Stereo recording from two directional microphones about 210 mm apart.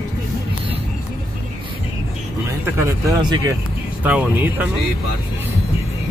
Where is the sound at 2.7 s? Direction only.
15° right (ahead or behind).